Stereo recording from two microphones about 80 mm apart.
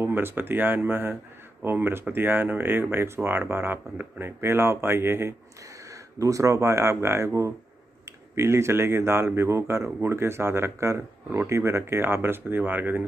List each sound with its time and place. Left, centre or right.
0.0 s speech: right
5.9 s speech: right